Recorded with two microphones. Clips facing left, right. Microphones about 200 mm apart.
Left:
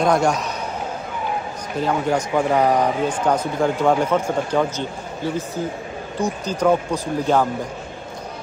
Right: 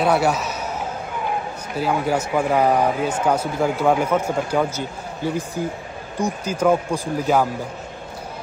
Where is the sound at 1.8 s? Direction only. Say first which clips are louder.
Left 1 dB; 5° right (ahead or behind).